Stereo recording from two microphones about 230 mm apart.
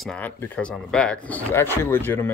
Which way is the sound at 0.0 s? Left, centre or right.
Centre.